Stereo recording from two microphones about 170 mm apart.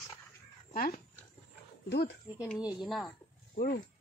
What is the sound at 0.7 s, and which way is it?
Speech, 55° left (ahead or behind).